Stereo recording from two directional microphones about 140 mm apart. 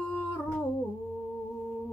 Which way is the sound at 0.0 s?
10° left (ahead or behind).